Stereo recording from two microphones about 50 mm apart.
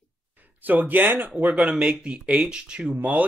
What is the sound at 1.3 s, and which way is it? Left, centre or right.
Speech, right.